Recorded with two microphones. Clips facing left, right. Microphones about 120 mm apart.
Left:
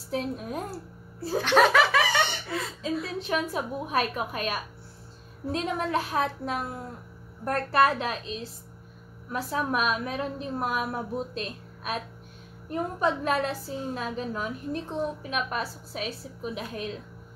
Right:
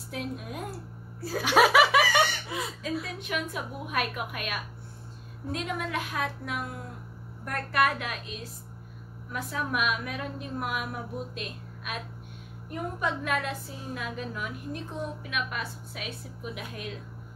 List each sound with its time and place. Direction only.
0.1 s a woman's voice: 35° left (ahead or behind)
1.4 s laughter: 10° right (ahead or behind)
2.8 s a woman's voice: 30° left (ahead or behind)